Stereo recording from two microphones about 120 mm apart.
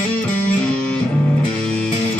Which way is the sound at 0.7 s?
10° left (ahead or behind).